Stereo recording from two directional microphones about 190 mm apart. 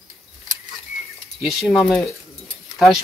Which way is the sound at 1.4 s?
Centre (ahead or behind).